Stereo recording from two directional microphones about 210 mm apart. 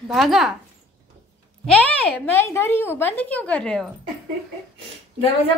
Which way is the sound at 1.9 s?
10° left (ahead or behind).